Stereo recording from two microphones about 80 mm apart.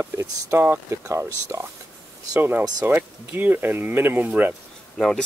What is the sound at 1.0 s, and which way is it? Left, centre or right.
Speech, right.